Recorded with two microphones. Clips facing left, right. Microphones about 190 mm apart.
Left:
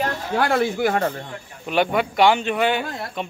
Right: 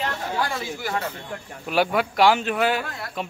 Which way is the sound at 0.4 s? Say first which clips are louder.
Left 12 dB; 65° left (ahead or behind).